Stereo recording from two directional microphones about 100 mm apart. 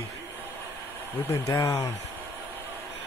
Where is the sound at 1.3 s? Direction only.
35° left (ahead or behind).